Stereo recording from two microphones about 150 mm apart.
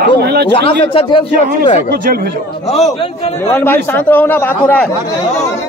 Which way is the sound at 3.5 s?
15° left (ahead or behind).